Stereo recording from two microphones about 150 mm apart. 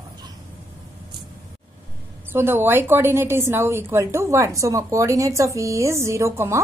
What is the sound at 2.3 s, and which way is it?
A woman's voice, 15° right (ahead or behind).